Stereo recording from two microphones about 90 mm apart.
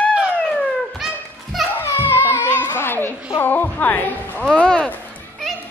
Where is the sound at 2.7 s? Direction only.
25° left (ahead or behind).